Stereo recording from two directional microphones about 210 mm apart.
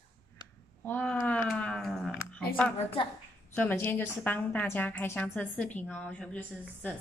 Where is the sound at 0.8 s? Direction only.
5° left (ahead or behind).